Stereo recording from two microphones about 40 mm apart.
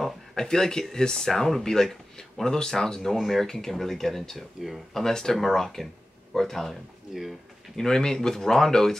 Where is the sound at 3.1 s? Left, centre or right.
Centre.